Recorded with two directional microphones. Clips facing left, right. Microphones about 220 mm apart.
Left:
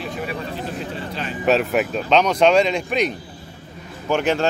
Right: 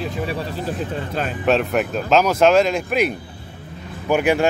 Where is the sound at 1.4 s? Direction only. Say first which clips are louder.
Left 1 dB; centre (ahead or behind).